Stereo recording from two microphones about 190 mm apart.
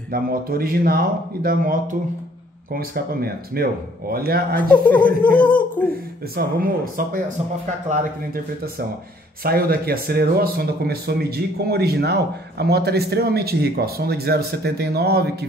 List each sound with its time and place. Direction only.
0.1 s speech: 50° right (ahead or behind)
4.6 s speech: 5° left (ahead or behind)
6.3 s speech: 50° right (ahead or behind)
9.4 s speech: 50° right (ahead or behind)